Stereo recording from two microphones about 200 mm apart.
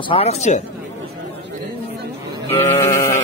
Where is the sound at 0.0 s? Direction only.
30° left (ahead or behind).